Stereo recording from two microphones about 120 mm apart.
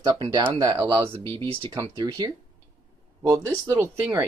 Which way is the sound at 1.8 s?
30° right (ahead or behind).